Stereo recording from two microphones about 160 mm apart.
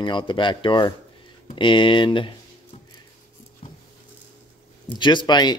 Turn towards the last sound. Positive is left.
turn(degrees=25)  # may be behind; listen again after turning